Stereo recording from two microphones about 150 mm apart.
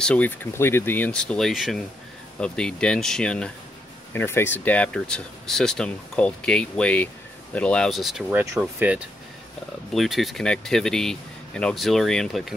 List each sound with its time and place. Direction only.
0.0 s speech: 10° left (ahead or behind)
8.3 s speech: 10° right (ahead or behind)